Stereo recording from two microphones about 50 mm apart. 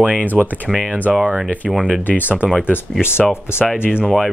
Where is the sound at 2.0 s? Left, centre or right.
Left.